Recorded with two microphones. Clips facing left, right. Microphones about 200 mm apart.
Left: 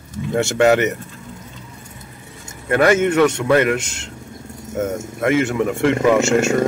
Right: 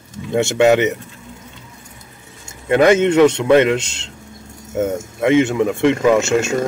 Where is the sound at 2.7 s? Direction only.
20° right (ahead or behind).